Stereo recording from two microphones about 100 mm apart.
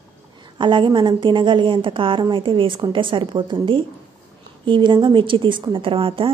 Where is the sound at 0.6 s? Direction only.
50° right (ahead or behind).